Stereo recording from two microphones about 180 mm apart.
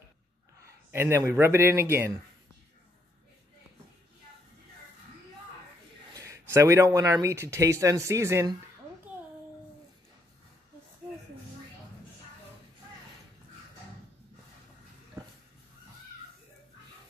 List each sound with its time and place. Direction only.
0.9 s speech: 15° right (ahead or behind)
6.1 s a sound: 15° right (ahead or behind)
6.5 s speech: 15° right (ahead or behind)